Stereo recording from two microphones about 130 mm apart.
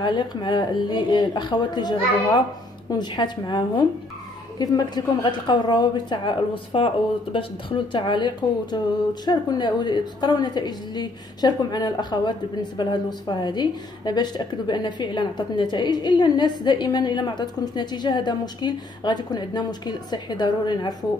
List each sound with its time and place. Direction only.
0.0 s speech: 35° left (ahead or behind)